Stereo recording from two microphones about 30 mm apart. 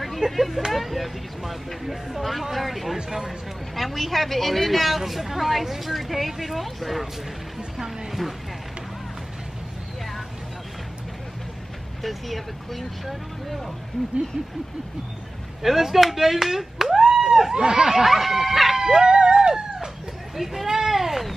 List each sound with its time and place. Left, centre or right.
0.2 s a woman's voice: centre
7.5 s a sound: centre
8.1 s speech: centre
12.0 s a woman's voice: centre
15.6 s speech: centre; by 17.4 s right
17.6 s snicker: right; by 18.9 s centre
18.9 s music: right
20.3 s a woman's voice: centre
20.7 s a sound: centre